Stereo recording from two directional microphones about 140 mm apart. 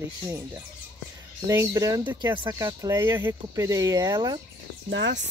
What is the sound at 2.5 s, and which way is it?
Speech, 20° right (ahead or behind).